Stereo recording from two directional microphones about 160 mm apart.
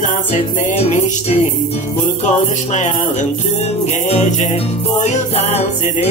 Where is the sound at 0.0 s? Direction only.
45° left (ahead or behind).